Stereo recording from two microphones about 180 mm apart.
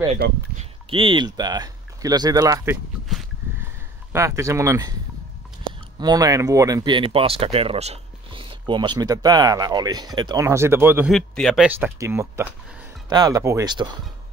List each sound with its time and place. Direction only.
0.6 s speech: 30° right (ahead or behind)
3.1 s a sound: centre (ahead or behind)
4.1 s speech: 15° right (ahead or behind)
5.9 s speech: 20° right (ahead or behind)
11.1 s speech: centre (ahead or behind)
12.0 s speech: 15° right (ahead or behind)